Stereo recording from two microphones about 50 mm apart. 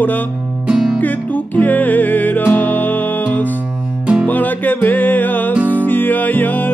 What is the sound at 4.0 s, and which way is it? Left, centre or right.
Music, right.